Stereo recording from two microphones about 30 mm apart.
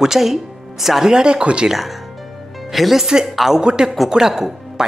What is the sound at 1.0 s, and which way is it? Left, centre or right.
Speech, right.